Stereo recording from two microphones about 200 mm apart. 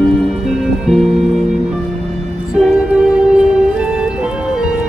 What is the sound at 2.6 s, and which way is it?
Music, 5° right (ahead or behind).